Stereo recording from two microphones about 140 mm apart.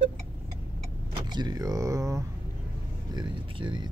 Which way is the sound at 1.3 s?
30° right (ahead or behind).